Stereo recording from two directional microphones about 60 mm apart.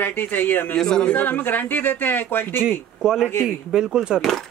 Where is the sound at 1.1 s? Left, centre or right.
Left.